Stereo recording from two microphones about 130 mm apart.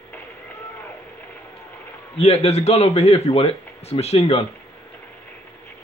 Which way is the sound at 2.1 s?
50° left (ahead or behind).